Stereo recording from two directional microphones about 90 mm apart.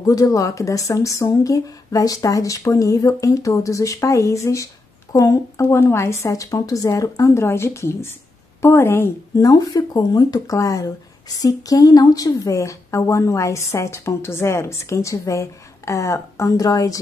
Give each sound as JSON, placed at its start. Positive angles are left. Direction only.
{"t": 0.0, "sound": "speech", "side_deg": 40}
{"t": 9.4, "sound": "speech", "side_deg": 40}